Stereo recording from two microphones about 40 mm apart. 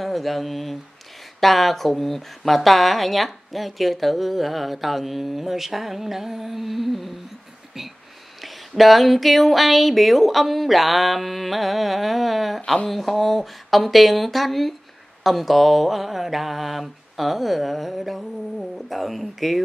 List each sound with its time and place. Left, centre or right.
0.0 s a sound: centre
1.4 s speech: centre
8.4 s speech: centre